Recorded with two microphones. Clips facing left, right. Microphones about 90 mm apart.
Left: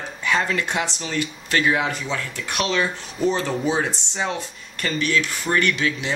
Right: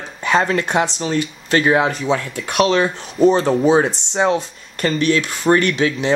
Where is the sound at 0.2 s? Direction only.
35° right (ahead or behind).